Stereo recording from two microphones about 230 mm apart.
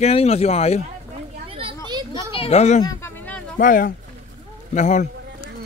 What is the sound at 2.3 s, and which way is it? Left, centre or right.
Speech, left.